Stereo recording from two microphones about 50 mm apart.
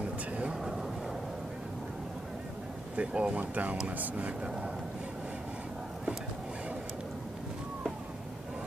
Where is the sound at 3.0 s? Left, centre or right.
Centre.